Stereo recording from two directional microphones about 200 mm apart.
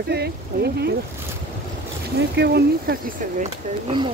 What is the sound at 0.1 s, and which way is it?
Speech, 55° right (ahead or behind).